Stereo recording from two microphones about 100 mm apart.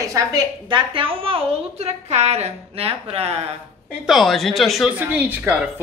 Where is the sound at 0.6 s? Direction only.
55° right (ahead or behind); by 3.3 s 85° right.